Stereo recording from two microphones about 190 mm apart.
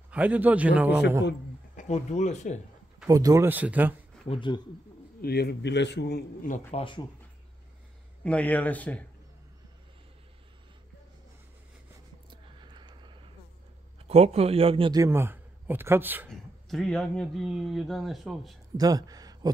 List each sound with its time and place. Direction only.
0.1 s a man's voice: 10° right (ahead or behind)
1.8 s speech: 35° left (ahead or behind)
3.1 s a man's voice: 20° right (ahead or behind)
4.3 s speech: 25° left (ahead or behind)
5.2 s a man's voice: 55° left (ahead or behind)
6.7 s speech: 25° left (ahead or behind)
8.2 s speech: 5° left (ahead or behind)
12.3 s a sound: 25° right (ahead or behind)
14.0 s a man's voice: 35° right (ahead or behind); by 16.3 s 10° right (ahead or behind)
16.3 s speech: centre (ahead or behind)
18.8 s speech: 20° right (ahead or behind)